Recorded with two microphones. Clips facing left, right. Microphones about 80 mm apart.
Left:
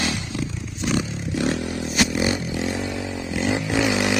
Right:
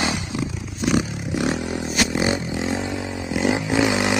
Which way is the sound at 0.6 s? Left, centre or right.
Centre.